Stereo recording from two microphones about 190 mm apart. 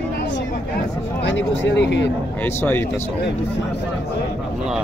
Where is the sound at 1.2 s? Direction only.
70° left (ahead or behind).